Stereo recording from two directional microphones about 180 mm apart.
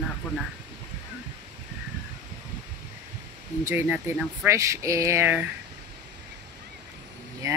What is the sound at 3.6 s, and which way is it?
Speech, 10° right (ahead or behind).